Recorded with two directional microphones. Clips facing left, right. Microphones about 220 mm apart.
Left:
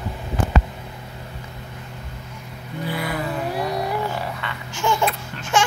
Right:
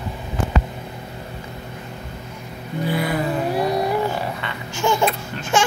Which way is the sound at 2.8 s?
25° right (ahead or behind).